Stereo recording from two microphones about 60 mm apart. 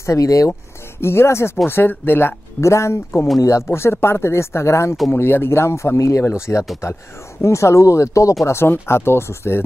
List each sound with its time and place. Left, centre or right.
0.0 s speech: left
1.0 s speech: left
2.6 s speech: left
3.6 s speech: left
8.5 s speech: left